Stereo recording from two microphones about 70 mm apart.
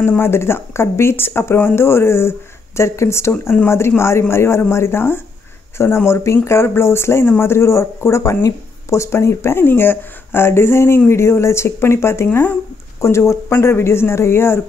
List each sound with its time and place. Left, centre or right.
0.2 s speech: left
12.3 s speech: left
13.0 s speech: left